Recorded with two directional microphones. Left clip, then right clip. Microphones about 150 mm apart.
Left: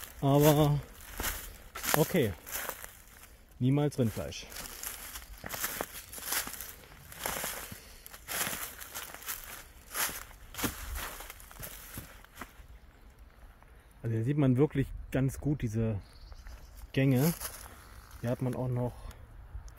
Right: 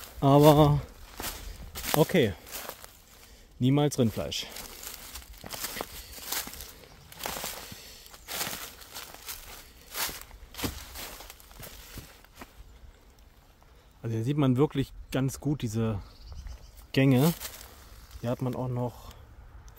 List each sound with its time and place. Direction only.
0.2 s speech: 65° right (ahead or behind)
2.0 s speech: 55° right (ahead or behind)
2.5 s walk: 15° left (ahead or behind)
3.6 s speech: 50° right (ahead or behind)
5.1 s walk: centre (ahead or behind)
5.7 s walk: 15° left (ahead or behind)
6.2 s a sound: 10° right (ahead or behind)
7.2 s a sound: 5° left (ahead or behind)
8.3 s a sound: 10° right (ahead or behind)
8.9 s a sound: 10° left (ahead or behind)
9.9 s walk: centre (ahead or behind)
14.2 s speech: 20° right (ahead or behind); by 16.0 s 35° right (ahead or behind)
16.9 s speech: 50° right (ahead or behind)
18.2 s speech: 25° right (ahead or behind)